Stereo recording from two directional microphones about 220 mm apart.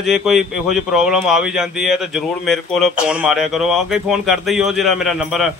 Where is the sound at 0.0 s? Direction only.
Centre (ahead or behind).